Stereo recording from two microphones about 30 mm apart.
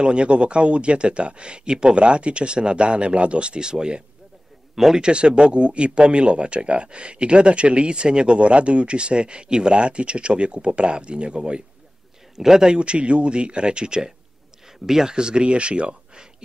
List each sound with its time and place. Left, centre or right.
0.0 s speech: right
2.0 s speech: right
4.7 s speech: centre
5.0 s speech: right
12.4 s speech: centre
12.7 s speech: right
14.9 s speech: centre
15.1 s speech: right